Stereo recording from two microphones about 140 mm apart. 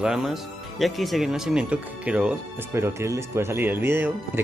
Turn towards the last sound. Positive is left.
turn(degrees=-15)  # may be behind; listen again after turning